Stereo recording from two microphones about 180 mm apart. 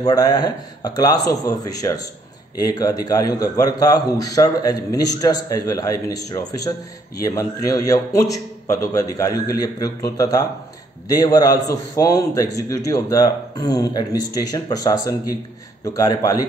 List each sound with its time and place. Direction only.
0.0 s a man's voice: 20° left (ahead or behind)